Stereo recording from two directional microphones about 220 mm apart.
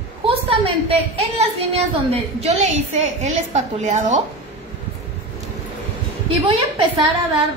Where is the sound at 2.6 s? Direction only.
30° right (ahead or behind).